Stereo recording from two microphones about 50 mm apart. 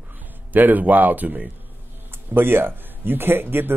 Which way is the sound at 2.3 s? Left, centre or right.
Right.